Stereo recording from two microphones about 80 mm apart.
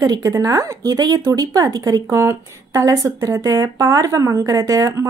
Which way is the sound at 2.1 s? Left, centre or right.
Right.